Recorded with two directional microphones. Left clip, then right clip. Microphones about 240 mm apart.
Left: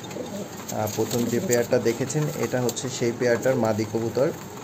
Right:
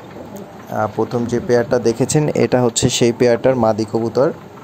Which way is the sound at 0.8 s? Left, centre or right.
Centre.